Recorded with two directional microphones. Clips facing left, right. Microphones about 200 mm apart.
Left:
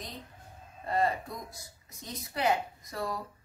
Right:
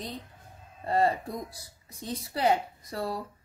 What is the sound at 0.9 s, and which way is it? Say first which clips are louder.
Speech: right 4 dB; 35° right (ahead or behind).